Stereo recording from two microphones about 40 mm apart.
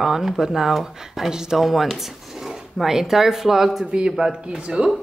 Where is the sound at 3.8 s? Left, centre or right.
Right.